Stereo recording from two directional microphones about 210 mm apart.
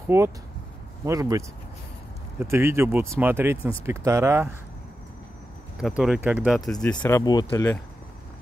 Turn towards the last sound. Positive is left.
turn(degrees=15)  # may be behind; listen again after turning